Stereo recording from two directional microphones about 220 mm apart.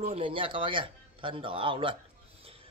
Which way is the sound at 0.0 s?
25° right (ahead or behind).